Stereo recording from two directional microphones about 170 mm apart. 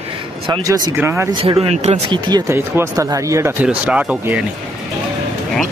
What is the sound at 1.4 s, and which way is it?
Speech, 35° right (ahead or behind).